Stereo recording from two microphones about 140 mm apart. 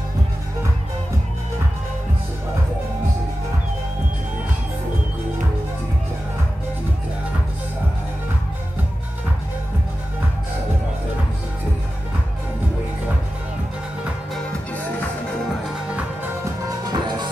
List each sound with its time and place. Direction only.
16.6 s music: 30° right (ahead or behind)